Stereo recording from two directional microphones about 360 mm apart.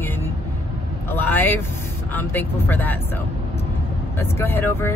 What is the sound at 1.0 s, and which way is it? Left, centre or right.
Speech, centre.